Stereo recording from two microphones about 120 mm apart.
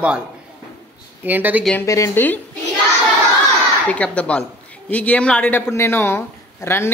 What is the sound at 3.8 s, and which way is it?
Speech, 10° left (ahead or behind).